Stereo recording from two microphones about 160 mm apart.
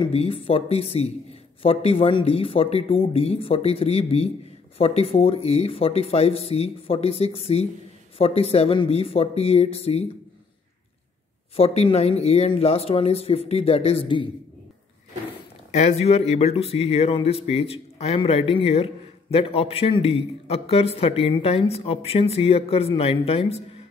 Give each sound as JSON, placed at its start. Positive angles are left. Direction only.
{"t": 0.0, "sound": "a man's voice", "side_deg": 35}
{"t": 11.5, "sound": "a man's voice", "side_deg": 40}
{"t": 15.7, "sound": "a man's voice", "side_deg": 45}